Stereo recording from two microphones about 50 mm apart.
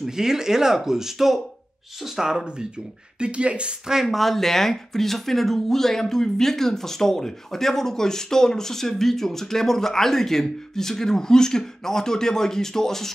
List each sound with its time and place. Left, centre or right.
0.0 s speech: centre
3.2 s speech: right
3.9 s speech: centre